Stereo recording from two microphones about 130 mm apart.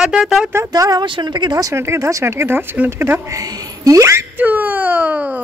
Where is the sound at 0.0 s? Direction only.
5° right (ahead or behind).